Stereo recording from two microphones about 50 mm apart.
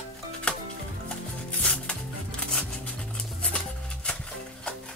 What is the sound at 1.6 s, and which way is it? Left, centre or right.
Music, centre.